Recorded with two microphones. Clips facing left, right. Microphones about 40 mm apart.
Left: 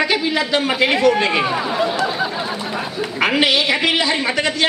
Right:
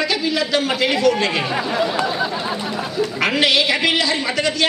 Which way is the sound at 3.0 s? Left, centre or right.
Centre.